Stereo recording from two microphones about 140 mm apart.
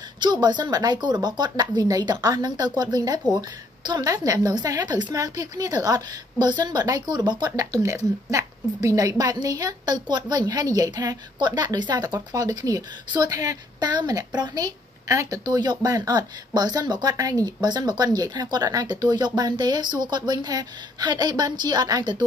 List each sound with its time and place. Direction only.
0.2 s a woman's voice: 30° right (ahead or behind)